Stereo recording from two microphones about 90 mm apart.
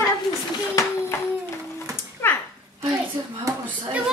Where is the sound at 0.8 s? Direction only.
40° left (ahead or behind).